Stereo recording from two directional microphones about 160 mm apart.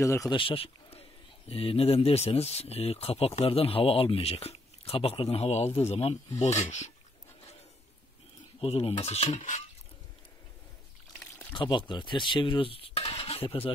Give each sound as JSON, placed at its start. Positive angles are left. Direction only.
{"t": 0.0, "sound": "speech", "side_deg": 20}
{"t": 0.4, "sound": "speech", "side_deg": 35}
{"t": 8.5, "sound": "speech", "side_deg": 40}
{"t": 11.5, "sound": "stir", "side_deg": 30}